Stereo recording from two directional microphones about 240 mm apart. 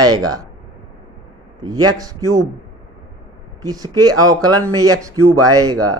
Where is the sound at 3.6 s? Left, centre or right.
Centre.